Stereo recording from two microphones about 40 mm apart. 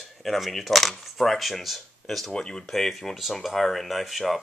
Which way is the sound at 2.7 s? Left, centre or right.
Centre.